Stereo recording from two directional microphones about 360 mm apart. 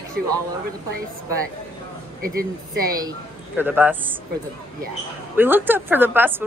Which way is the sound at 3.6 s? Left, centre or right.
Centre.